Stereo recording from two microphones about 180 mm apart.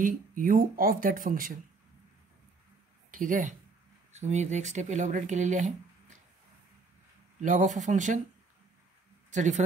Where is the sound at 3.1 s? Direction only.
45° right (ahead or behind).